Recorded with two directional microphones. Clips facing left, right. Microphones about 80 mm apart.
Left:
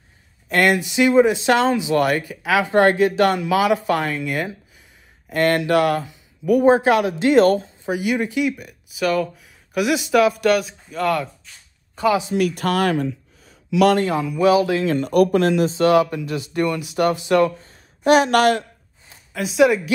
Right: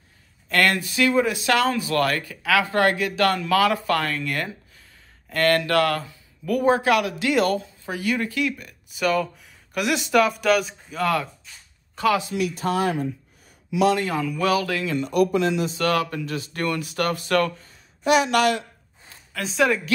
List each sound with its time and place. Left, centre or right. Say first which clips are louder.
0.5 s speech: left 4 dB; centre; by 7.6 s left
7.8 s speech: left 4 dB; centre
12.1 s speech: left 3 dB; centre
12.4 s speech: left 4 dB; left
14.1 s speech: left 6 dB; centre
14.9 s speech: left 2 dB; left
15.7 s speech: left 7 dB; left
17.6 s speech: left 3 dB; left
19.3 s speech: left 5 dB; centre